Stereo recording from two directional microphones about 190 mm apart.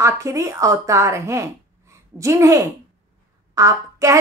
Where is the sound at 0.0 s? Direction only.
15° right (ahead or behind).